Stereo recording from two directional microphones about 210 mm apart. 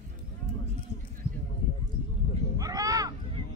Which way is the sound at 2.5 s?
15° right (ahead or behind).